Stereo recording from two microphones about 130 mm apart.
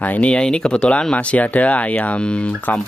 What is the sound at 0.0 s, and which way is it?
Speech, 10° left (ahead or behind).